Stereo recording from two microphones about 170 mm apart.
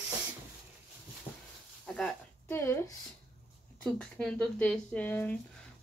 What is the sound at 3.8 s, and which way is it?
Speech, 5° left (ahead or behind).